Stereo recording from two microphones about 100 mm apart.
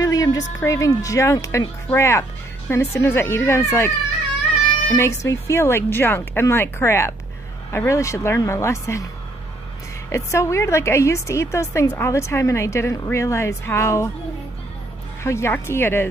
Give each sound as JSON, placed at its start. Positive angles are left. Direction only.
{"t": 0.0, "sound": "a woman's voice", "side_deg": 35}
{"t": 4.9, "sound": "a woman's voice", "side_deg": 30}
{"t": 10.0, "sound": "a woman's voice", "side_deg": 30}
{"t": 15.2, "sound": "a woman's voice", "side_deg": 25}